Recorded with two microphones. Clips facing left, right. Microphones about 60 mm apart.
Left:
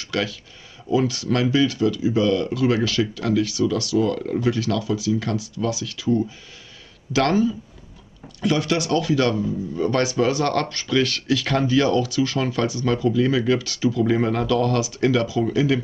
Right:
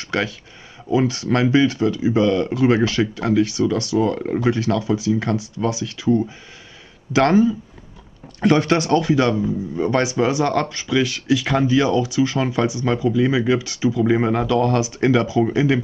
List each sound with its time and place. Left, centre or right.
0.0 s a man's voice: right